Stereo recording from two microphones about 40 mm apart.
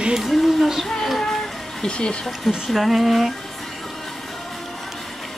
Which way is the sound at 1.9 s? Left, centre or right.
Left.